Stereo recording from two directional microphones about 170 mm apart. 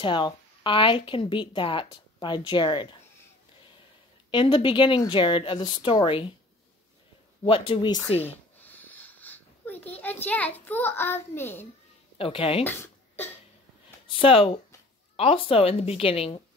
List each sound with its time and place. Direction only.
0.0 s speech: 30° left (ahead or behind)
4.3 s speech: 30° left (ahead or behind)
7.4 s a woman's voice: 30° left (ahead or behind)
8.5 s a child's voice: 10° left (ahead or behind)
12.2 s a woman's voice: 35° left (ahead or behind)
12.6 s a sound: 10° left (ahead or behind)
13.8 s a sound: 30° left (ahead or behind)
15.1 s a woman's voice: 30° left (ahead or behind)